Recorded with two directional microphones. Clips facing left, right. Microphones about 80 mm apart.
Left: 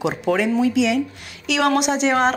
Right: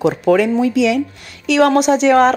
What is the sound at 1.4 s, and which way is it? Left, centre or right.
Speech, right.